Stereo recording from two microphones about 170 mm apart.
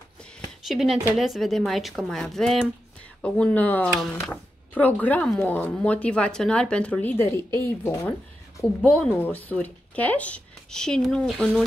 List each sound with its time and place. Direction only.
0.7 s speech: centre (ahead or behind); by 8.1 s 15° left (ahead or behind)
8.8 s speech: 5° left (ahead or behind)